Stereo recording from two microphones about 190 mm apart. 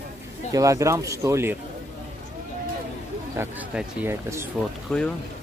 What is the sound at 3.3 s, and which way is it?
Speech, 10° right (ahead or behind).